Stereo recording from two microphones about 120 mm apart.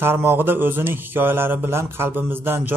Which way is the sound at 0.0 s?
20° right (ahead or behind).